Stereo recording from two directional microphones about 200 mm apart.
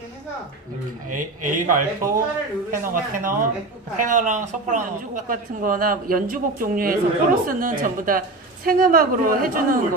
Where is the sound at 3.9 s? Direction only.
40° right (ahead or behind).